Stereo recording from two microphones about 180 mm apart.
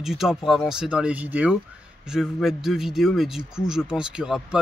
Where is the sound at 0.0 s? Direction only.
Centre (ahead or behind).